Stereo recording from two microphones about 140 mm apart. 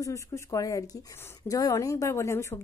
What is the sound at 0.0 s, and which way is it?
A woman's voice, 20° left (ahead or behind).